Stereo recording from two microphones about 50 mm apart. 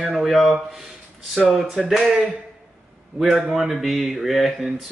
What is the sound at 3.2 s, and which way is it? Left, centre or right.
Speech, centre.